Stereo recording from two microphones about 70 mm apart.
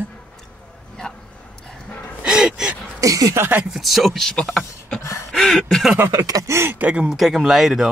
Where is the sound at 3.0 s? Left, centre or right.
Right.